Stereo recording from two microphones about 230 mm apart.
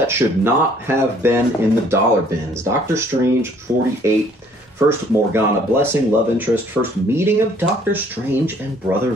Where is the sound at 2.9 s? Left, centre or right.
Centre.